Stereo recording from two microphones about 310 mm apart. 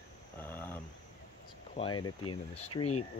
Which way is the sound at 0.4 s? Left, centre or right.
Centre.